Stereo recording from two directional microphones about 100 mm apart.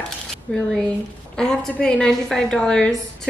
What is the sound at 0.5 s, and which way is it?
A woman's voice, 10° left (ahead or behind).